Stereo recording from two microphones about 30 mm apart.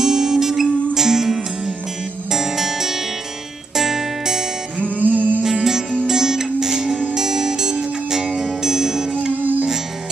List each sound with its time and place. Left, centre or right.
0.0 s music: centre
4.8 s music: right
5.4 s music: centre
9.4 s music: right